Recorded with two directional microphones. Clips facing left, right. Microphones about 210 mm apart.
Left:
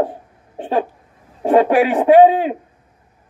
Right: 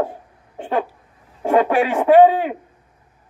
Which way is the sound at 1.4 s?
25° left (ahead or behind).